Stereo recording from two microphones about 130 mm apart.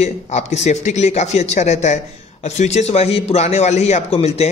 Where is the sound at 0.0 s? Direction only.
60° left (ahead or behind).